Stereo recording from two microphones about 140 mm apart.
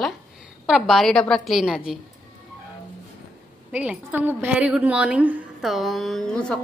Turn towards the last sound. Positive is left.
turn(degrees=5)  # may be behind; listen again after turning